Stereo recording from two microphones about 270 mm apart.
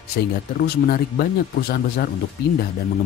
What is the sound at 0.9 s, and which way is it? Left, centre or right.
Speech, left.